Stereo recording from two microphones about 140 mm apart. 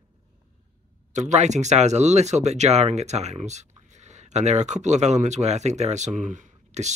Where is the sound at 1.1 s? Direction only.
60° right (ahead or behind).